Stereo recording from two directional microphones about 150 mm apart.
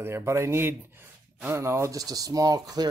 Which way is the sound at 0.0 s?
15° right (ahead or behind).